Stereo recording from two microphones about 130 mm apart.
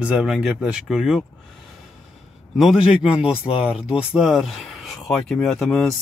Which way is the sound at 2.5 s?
5° right (ahead or behind).